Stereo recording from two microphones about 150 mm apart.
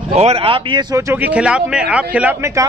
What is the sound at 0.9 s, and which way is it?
Speech, 15° right (ahead or behind).